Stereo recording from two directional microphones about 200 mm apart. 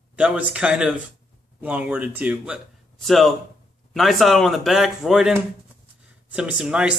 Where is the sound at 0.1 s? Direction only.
5° right (ahead or behind).